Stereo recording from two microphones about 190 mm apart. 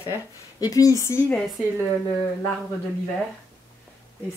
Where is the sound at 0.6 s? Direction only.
20° left (ahead or behind).